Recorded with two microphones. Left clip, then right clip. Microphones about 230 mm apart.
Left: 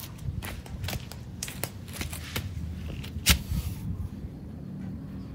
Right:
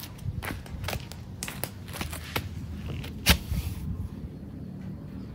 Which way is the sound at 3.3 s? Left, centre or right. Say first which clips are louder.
Right 1 dB; right.